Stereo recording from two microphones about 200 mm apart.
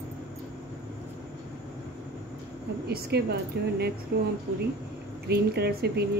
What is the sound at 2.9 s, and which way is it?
Speech, 55° right (ahead or behind).